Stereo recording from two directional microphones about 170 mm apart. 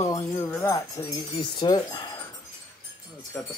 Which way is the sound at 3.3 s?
10° left (ahead or behind).